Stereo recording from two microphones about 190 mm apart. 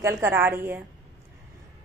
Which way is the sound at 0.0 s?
15° right (ahead or behind).